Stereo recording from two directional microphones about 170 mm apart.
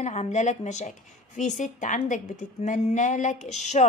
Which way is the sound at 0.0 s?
40° left (ahead or behind).